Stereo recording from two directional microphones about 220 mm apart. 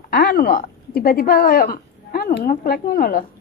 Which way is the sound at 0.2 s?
45° left (ahead or behind).